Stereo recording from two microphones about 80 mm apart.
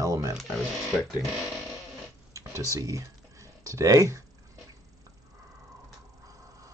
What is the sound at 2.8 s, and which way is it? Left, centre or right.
Speech, right.